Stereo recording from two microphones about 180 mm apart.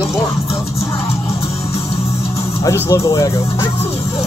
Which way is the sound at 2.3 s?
15° left (ahead or behind).